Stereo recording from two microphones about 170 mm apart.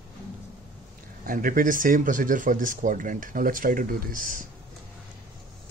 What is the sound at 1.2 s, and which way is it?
Speech, 55° right (ahead or behind).